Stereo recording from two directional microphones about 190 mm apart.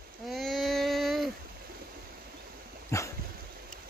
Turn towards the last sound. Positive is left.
turn(degrees=15)  # may be behind; listen again after turning